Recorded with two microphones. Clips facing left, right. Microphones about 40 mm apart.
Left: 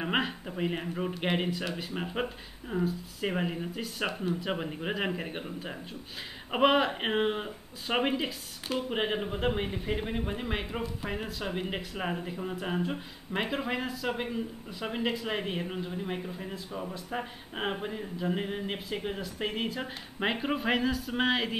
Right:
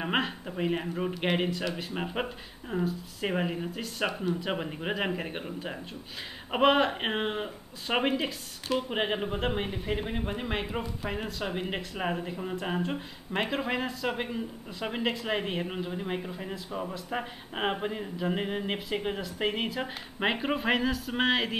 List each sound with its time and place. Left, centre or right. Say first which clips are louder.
0.0 s speech: right 1 dB; centre